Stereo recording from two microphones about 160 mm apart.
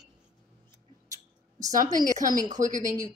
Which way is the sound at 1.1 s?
20° right (ahead or behind).